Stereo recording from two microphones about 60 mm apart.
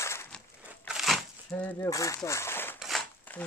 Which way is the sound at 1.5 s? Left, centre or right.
Left.